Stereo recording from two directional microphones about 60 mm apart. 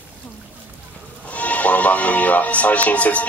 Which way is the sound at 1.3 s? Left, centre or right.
Left.